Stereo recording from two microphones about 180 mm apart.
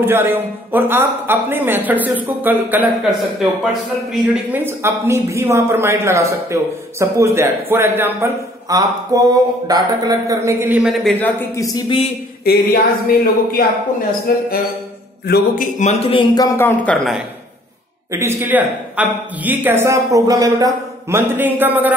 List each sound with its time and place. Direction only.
0.0 s speech: 10° right (ahead or behind)
4.1 s a man's voice: 10° right (ahead or behind); by 12.1 s 25° left (ahead or behind)
12.4 s speech: 55° left (ahead or behind)
14.3 s a sound: 55° left (ahead or behind)
15.2 s speech: 55° left (ahead or behind); by 16.4 s 30° left (ahead or behind)
16.5 s speech: 10° left (ahead or behind)
18.1 s speech: 15° right (ahead or behind)